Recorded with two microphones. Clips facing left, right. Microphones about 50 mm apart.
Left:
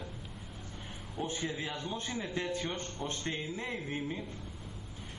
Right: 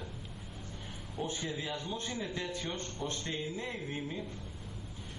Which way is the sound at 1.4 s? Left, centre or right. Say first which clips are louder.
Left 1 dB; centre.